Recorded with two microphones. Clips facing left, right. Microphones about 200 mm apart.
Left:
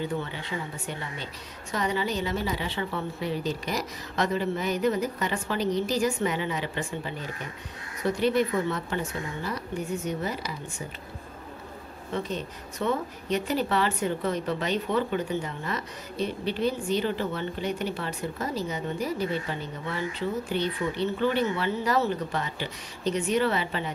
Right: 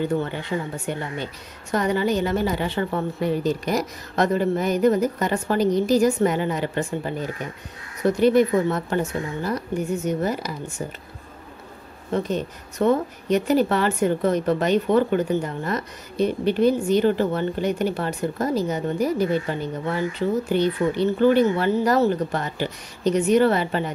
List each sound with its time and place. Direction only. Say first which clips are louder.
0.0 s speech: right 7 dB; 50° right (ahead or behind)
12.1 s speech: right 7 dB; 45° right (ahead or behind)